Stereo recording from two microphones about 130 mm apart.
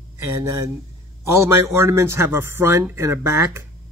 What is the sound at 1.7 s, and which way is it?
Speech, 20° right (ahead or behind).